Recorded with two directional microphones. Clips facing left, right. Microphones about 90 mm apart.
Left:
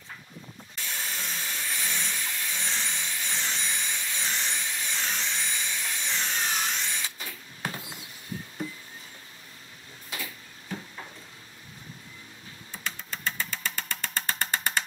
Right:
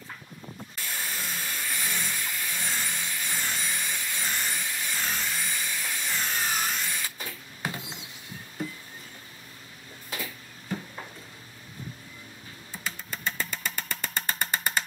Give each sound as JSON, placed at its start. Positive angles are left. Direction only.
{"t": 0.7, "sound": "vehicle", "side_deg": -5}
{"t": 7.8, "sound": "a sound", "side_deg": -20}
{"t": 12.7, "sound": "engine", "side_deg": -5}